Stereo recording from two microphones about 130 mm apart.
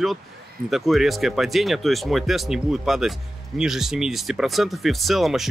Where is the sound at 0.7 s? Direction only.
Centre (ahead or behind).